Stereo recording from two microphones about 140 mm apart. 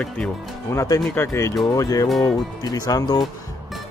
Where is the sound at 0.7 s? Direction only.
20° left (ahead or behind).